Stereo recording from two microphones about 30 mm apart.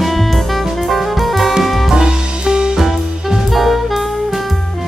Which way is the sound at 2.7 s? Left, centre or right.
Centre.